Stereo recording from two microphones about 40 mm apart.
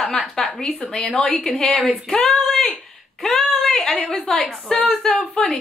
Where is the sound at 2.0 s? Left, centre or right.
Centre.